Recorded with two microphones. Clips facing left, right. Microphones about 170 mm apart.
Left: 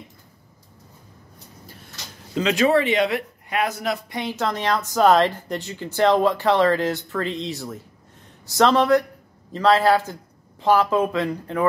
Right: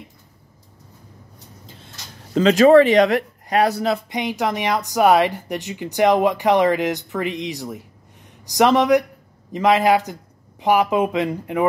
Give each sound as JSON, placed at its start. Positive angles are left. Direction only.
{"t": 2.3, "sound": "speech", "side_deg": -40}
{"t": 4.1, "sound": "speech", "side_deg": -15}